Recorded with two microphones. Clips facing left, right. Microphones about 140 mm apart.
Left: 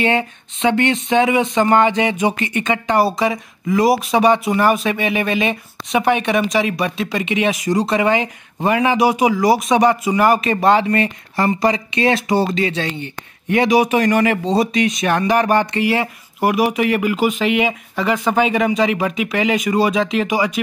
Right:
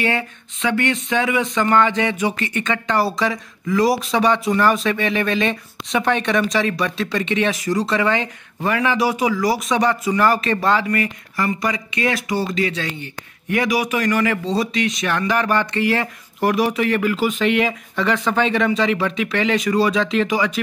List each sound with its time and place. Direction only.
0.0 s speech: 25° left (ahead or behind)